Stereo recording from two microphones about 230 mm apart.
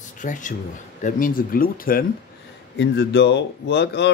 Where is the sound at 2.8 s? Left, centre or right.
Left.